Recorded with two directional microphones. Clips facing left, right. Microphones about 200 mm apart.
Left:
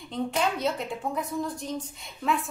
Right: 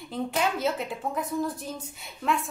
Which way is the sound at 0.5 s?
Centre (ahead or behind).